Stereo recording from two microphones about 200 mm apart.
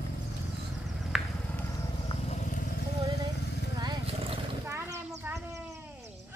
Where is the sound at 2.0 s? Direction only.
35° left (ahead or behind).